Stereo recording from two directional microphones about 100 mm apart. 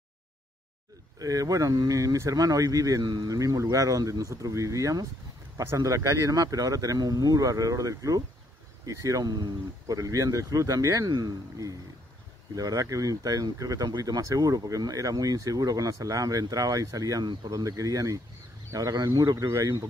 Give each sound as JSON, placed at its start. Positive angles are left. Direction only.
{"t": 1.2, "sound": "speech", "side_deg": -35}
{"t": 19.3, "sound": "speech", "side_deg": -30}